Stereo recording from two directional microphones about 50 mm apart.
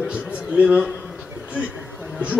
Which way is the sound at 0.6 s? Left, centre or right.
Centre.